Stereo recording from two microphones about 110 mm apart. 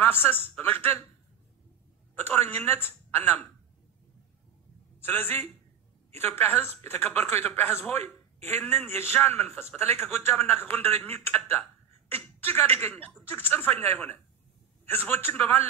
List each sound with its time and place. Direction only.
0.0 s a man's voice: 20° left (ahead or behind)
2.1 s a man's voice: 20° left (ahead or behind)
5.0 s a man's voice: 20° left (ahead or behind)